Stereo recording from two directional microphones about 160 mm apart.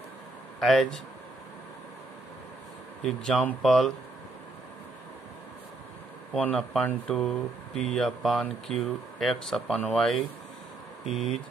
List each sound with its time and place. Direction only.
0.6 s speech: centre (ahead or behind)
3.1 s speech: centre (ahead or behind)
6.3 s speech: 5° left (ahead or behind)